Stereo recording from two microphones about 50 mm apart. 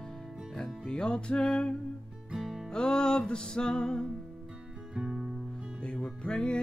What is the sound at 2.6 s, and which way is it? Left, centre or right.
Music, centre.